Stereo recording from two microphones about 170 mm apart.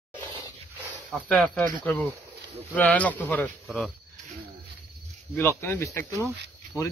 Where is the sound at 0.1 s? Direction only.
30° right (ahead or behind).